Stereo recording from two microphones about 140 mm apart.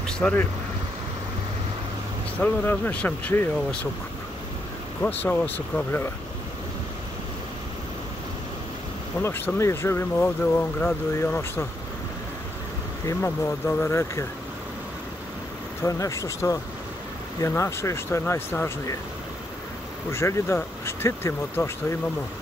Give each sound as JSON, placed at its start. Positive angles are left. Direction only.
{"t": 0.0, "sound": "vehicle", "side_deg": 10}
{"t": 2.4, "sound": "speech", "side_deg": 15}
{"t": 5.2, "sound": "speech", "side_deg": 15}
{"t": 9.2, "sound": "speech", "side_deg": 15}
{"t": 13.0, "sound": "speech", "side_deg": 20}
{"t": 15.8, "sound": "speech", "side_deg": 25}
{"t": 20.1, "sound": "speech", "side_deg": 20}